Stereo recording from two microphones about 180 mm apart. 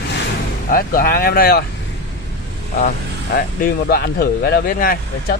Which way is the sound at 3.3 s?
55° left (ahead or behind).